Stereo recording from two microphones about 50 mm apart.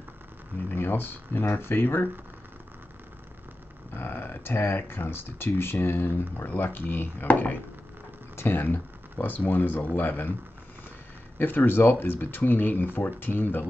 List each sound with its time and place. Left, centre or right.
0.7 s speech: left
3.9 s speech: left
6.4 s speech: left
7.2 s speech: left
8.4 s speech: left
11.3 s speech: left